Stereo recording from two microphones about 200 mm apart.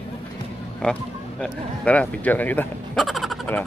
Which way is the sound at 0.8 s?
5° left (ahead or behind).